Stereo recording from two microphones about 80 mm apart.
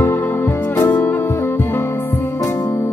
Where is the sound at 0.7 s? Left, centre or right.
Left.